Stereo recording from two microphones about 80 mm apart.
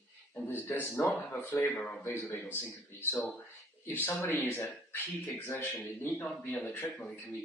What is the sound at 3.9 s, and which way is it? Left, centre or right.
Speech, left.